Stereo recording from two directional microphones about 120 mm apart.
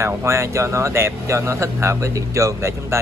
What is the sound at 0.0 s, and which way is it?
Speech, 25° right (ahead or behind).